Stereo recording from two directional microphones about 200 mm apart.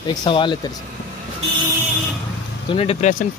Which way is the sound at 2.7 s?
30° left (ahead or behind).